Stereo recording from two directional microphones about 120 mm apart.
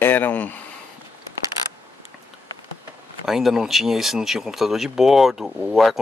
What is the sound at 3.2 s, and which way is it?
Speech, centre (ahead or behind).